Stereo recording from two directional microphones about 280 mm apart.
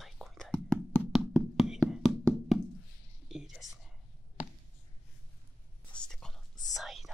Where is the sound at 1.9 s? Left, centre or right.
Centre.